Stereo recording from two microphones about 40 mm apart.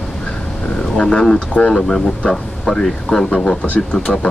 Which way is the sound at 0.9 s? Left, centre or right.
Left.